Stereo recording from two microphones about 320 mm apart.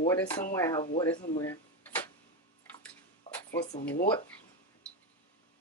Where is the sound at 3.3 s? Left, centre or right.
Centre.